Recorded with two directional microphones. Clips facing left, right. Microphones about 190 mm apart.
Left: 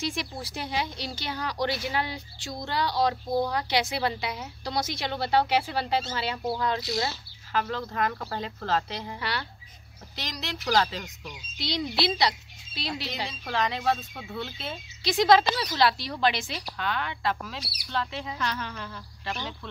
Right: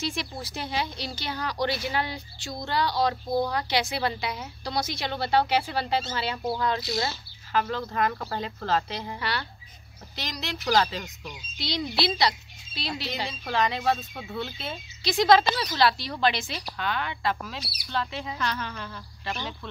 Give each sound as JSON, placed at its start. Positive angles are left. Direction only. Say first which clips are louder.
{"t": 0.0, "sound": "speech", "louder": "even", "side_deg": 15}
{"t": 7.5, "sound": "speech", "louder": "right 2 dB", "side_deg": -5}
{"t": 9.2, "sound": "speech", "louder": "right 1 dB", "side_deg": 15}
{"t": 10.1, "sound": "speech", "louder": "right 1 dB", "side_deg": -5}
{"t": 11.5, "sound": "speech", "louder": "even", "side_deg": 20}
{"t": 13.3, "sound": "speech", "louder": "right 3 dB", "side_deg": -10}
{"t": 15.0, "sound": "speech", "louder": "even", "side_deg": 15}
{"t": 16.7, "sound": "speech", "louder": "right 1 dB", "side_deg": -10}
{"t": 18.4, "sound": "speech", "louder": "right 1 dB", "side_deg": 15}